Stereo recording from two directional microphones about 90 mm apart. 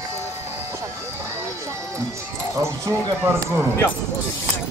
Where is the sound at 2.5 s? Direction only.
35° right (ahead or behind).